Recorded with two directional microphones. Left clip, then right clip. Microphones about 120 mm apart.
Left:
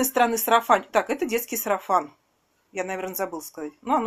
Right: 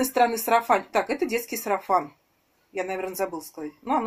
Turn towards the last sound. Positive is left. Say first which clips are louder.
# left 2 dB
turn(degrees=20)  # may be behind; listen again after turning